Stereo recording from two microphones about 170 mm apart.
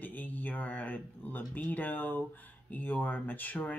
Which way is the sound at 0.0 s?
10° left (ahead or behind).